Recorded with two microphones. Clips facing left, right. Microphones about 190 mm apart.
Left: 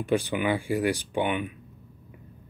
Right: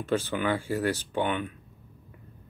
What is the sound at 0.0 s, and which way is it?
Speech, 15° left (ahead or behind).